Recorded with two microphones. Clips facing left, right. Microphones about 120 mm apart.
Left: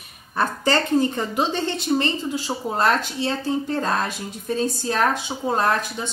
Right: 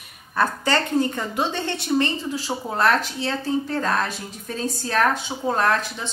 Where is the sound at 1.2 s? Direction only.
20° left (ahead or behind).